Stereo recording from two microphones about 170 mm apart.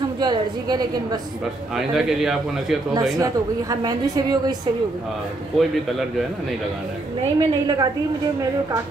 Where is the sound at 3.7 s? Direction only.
20° right (ahead or behind).